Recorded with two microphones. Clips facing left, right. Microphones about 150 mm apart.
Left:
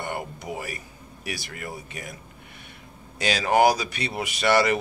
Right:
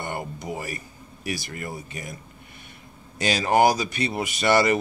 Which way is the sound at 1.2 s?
45° right (ahead or behind).